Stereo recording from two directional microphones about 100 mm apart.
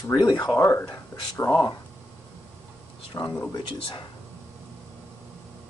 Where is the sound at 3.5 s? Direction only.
50° left (ahead or behind).